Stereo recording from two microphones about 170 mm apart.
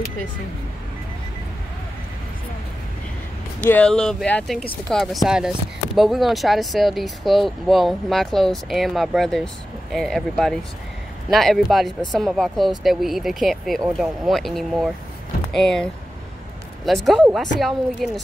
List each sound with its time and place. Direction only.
3.6 s speech: 5° left (ahead or behind)
16.8 s speech: centre (ahead or behind)